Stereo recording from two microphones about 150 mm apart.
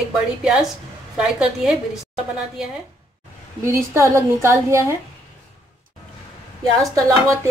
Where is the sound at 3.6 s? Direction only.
20° right (ahead or behind).